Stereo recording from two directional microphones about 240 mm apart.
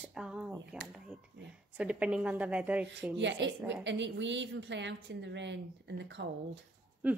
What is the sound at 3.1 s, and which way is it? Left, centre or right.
A woman's voice, right.